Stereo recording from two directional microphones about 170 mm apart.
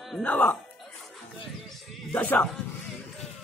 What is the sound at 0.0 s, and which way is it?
Speech, 5° left (ahead or behind).